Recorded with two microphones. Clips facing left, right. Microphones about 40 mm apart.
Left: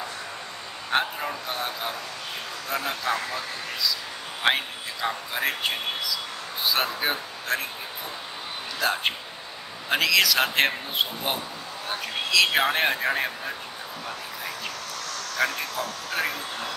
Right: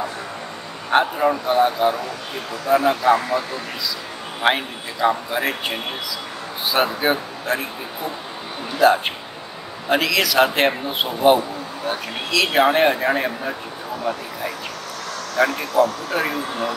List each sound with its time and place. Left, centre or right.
0.8 s a man's voice: centre
8.7 s a man's voice: centre
12.3 s a man's voice: centre
15.3 s a man's voice: centre